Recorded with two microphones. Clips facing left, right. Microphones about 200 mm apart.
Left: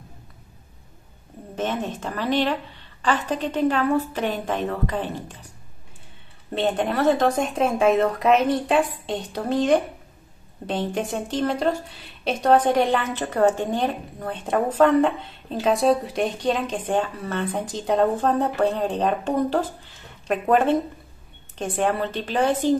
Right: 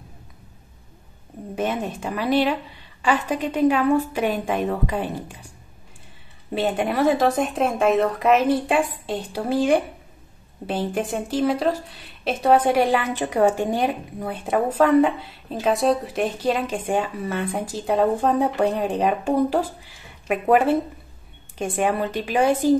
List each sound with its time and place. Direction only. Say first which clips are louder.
1.5 s a woman's voice: right 1 dB; 10° right (ahead or behind)
6.5 s a woman's voice: even; 5° right (ahead or behind)